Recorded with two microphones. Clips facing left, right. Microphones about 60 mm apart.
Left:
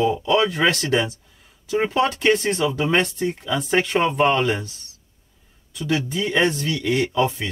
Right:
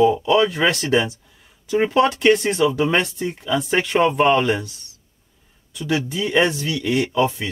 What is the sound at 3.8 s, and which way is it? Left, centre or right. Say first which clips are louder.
Speech: right 4 dB; centre.